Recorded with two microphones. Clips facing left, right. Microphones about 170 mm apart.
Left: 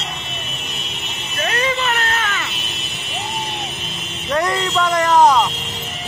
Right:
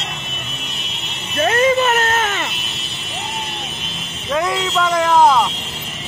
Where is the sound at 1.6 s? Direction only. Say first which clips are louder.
Right 6 dB; 45° right (ahead or behind).